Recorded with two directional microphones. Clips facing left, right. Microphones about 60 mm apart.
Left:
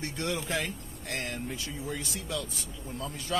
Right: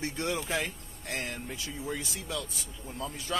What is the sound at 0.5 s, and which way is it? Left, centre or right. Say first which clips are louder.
Speech: even; centre.